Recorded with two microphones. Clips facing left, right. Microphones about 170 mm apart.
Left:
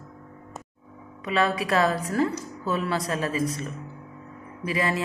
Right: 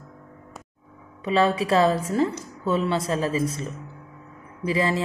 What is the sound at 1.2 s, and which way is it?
Speech, 30° right (ahead or behind).